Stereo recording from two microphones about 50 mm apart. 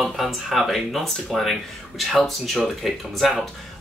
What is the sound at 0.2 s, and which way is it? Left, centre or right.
Speech, centre.